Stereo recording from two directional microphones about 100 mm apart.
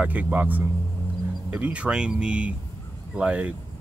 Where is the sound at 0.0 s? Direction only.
15° right (ahead or behind).